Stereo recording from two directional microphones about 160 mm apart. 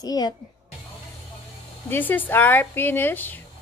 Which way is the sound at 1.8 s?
10° left (ahead or behind).